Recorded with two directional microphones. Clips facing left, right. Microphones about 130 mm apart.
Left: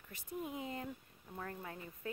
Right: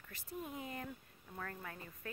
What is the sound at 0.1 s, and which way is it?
Speech, 20° left (ahead or behind).